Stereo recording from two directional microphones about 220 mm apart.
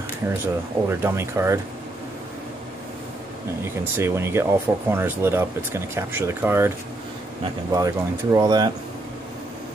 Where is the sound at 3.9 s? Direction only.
10° right (ahead or behind).